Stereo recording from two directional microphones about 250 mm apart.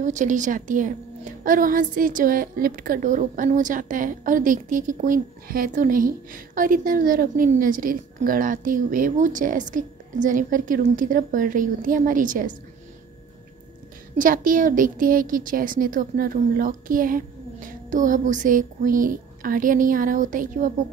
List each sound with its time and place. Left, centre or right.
0.0 s a woman's voice: right
14.1 s a woman's voice: right